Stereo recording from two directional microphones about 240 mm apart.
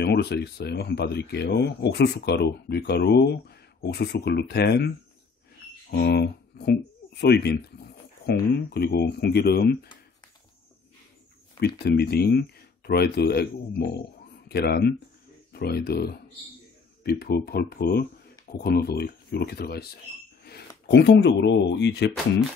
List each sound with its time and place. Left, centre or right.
0.0 s speech: left
11.6 s speech: left